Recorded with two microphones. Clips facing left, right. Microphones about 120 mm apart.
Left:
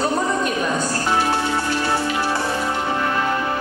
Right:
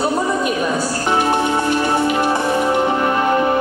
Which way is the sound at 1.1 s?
20° right (ahead or behind).